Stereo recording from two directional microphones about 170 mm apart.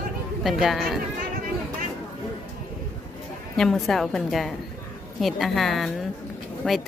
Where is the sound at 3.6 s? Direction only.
Centre (ahead or behind).